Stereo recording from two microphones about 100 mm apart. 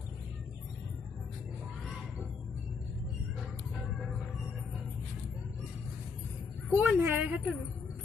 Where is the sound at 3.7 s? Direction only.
Centre (ahead or behind).